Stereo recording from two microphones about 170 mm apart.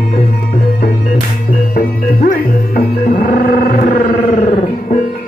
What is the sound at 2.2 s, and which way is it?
Music, 55° left (ahead or behind).